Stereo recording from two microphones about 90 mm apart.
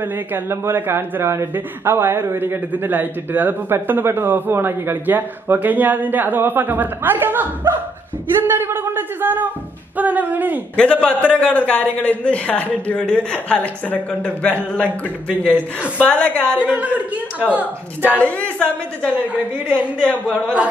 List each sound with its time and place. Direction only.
0.0 s a man's voice: 25° right (ahead or behind)
10.8 s a man's voice: 15° left (ahead or behind)
16.0 s a man's voice: 15° left (ahead or behind)
16.6 s a man's voice: 15° right (ahead or behind)
18.1 s a man's voice: 15° left (ahead or behind)
19.2 s speech: 15° right (ahead or behind)